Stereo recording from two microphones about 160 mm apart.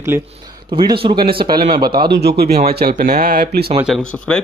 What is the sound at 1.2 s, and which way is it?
Speech, 70° right (ahead or behind).